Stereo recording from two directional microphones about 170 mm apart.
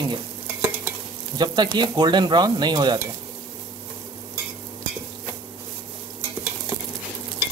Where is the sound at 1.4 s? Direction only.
25° right (ahead or behind).